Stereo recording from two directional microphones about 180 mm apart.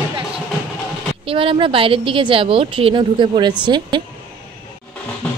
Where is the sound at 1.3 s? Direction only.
30° right (ahead or behind).